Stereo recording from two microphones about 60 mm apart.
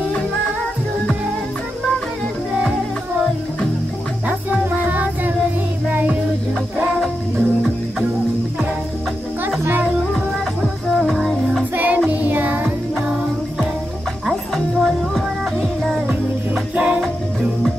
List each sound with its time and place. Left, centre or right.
4.5 s music: right
10.6 s music: centre
11.7 s music: right
14.3 s music: centre
16.7 s music: right
17.0 s music: centre